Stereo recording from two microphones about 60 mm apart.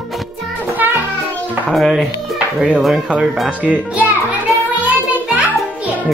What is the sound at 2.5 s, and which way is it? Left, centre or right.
A child's voice, centre.